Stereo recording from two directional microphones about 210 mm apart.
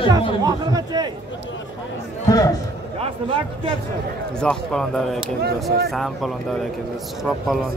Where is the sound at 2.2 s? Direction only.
15° left (ahead or behind).